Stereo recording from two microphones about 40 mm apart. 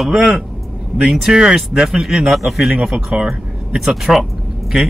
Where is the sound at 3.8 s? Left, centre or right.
Centre.